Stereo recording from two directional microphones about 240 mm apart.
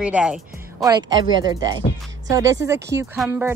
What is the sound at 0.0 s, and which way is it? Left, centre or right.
Speech, centre.